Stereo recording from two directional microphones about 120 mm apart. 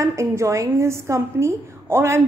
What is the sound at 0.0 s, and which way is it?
A woman's voice, 25° right (ahead or behind).